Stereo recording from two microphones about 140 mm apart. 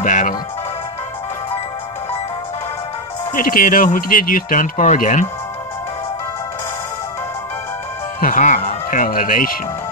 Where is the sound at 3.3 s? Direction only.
85° left; by 5.2 s 65° left (ahead or behind).